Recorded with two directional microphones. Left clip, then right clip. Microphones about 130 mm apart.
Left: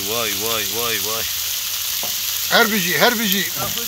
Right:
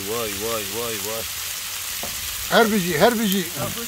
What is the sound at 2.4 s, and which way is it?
Speech, 90° right.